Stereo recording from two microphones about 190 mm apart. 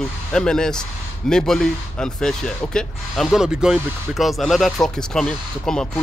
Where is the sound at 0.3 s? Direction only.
5° left (ahead or behind).